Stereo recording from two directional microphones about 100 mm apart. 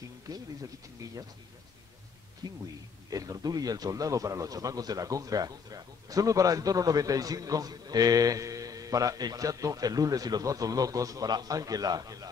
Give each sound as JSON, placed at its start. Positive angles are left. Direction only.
{"t": 2.6, "sound": "a man's voice", "side_deg": -35}